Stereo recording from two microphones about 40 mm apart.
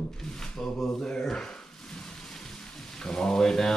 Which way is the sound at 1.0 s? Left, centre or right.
Centre.